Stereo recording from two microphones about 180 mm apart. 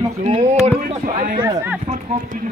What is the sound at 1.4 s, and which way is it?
Speech, 15° right (ahead or behind).